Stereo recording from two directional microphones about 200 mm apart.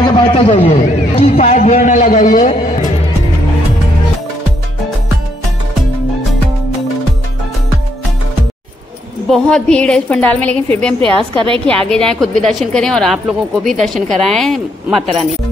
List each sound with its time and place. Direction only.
0.0 s a man's voice: 25° left (ahead or behind); by 2.5 s 40° left (ahead or behind)
9.3 s a woman's voice: 5° left (ahead or behind)
11.0 s a woman's voice: 25° right (ahead or behind)
11.9 s a woman's voice: 5° left (ahead or behind)